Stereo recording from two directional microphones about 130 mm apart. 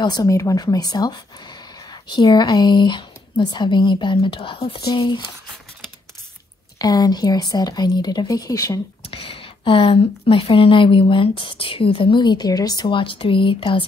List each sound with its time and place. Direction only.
0.0 s speech: 30° left (ahead or behind)
6.8 s speech: 30° left (ahead or behind)
9.0 s speech: 45° left (ahead or behind)